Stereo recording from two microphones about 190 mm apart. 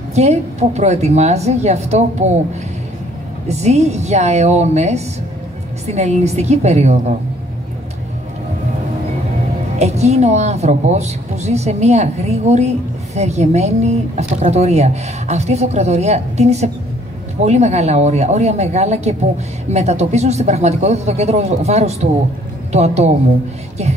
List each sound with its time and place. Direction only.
0.1 s a woman's voice: 35° right (ahead or behind)
3.4 s a woman's voice: 35° right (ahead or behind)
9.8 s a woman's voice: 35° right (ahead or behind)